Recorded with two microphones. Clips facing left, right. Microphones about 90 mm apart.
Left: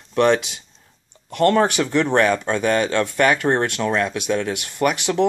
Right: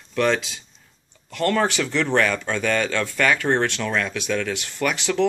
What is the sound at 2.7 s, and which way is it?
Speech, 35° left (ahead or behind).